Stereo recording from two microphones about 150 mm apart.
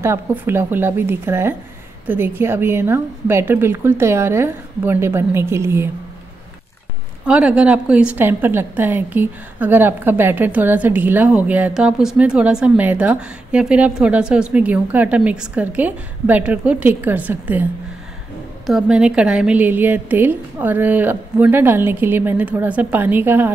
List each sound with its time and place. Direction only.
0.0 s a woman's voice: 15° right (ahead or behind)
7.2 s a woman's voice: 10° right (ahead or behind)
18.7 s a woman's voice: 5° right (ahead or behind)